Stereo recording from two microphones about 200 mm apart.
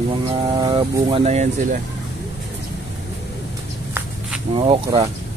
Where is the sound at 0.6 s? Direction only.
25° right (ahead or behind).